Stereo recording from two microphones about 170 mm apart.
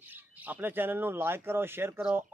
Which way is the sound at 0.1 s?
10° right (ahead or behind).